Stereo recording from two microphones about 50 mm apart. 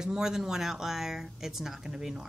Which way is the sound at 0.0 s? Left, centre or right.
Centre.